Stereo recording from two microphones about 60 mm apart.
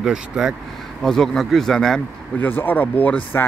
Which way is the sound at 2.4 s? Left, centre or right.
Left.